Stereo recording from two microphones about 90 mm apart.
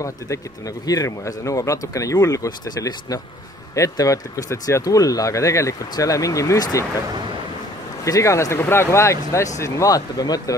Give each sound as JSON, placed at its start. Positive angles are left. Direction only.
{"t": 0.0, "sound": "speech", "side_deg": 40}
{"t": 8.0, "sound": "speech", "side_deg": 35}